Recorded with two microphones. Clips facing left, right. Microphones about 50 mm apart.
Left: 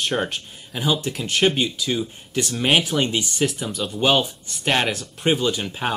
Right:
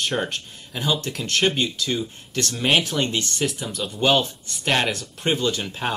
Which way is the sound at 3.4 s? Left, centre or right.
Centre.